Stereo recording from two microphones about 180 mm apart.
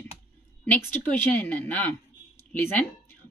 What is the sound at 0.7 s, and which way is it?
A woman's voice, 10° left (ahead or behind).